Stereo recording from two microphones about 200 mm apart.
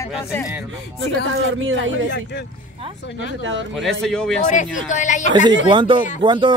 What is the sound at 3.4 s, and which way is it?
Speech, 70° right (ahead or behind).